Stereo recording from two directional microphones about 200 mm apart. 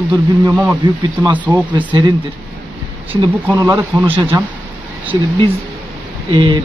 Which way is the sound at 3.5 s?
15° right (ahead or behind).